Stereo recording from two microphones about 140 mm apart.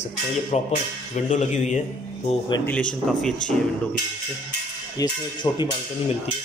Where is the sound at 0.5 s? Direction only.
55° left (ahead or behind).